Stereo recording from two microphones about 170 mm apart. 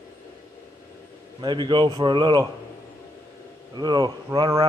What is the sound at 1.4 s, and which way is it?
A man's voice, 30° right (ahead or behind).